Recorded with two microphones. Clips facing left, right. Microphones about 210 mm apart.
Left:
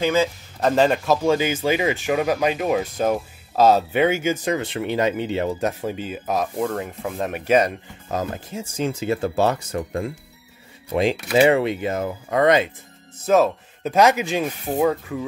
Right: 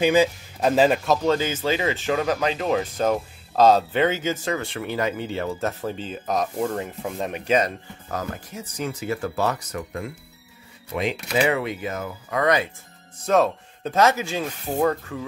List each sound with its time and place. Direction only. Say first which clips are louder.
0.0 s speech: right 2 dB; 15° right (ahead or behind); by 7.7 s 10° left (ahead or behind)
8.1 s speech: left 4 dB; 25° left (ahead or behind)
13.2 s speech: left 2 dB; 5° left (ahead or behind)
14.8 s speech: left 2 dB; 10° left (ahead or behind)